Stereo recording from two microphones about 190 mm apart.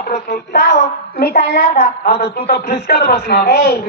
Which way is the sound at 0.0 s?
45° left (ahead or behind).